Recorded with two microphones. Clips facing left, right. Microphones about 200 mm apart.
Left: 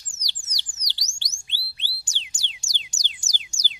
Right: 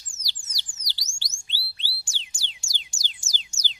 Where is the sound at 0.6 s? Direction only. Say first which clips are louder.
Left 1 dB; 20° left (ahead or behind).